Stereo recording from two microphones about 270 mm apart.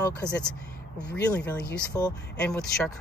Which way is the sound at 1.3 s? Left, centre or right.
Centre.